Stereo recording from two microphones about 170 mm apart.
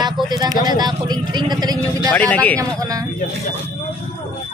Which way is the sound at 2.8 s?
20° right (ahead or behind).